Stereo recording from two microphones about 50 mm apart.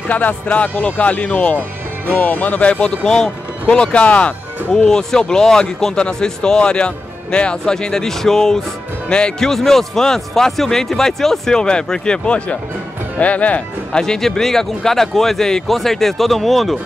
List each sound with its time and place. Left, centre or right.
0.1 s speech: left
4.7 s a man's voice: centre; by 13.6 s left
13.9 s a man's voice: centre